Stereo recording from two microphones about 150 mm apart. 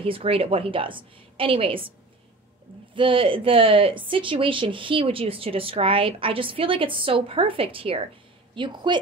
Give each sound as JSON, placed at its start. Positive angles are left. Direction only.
{"t": 0.0, "sound": "speech", "side_deg": -40}
{"t": 2.9, "sound": "speech", "side_deg": -35}